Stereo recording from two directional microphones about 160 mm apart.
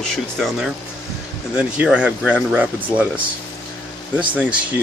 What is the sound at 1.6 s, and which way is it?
Speech, 5° right (ahead or behind).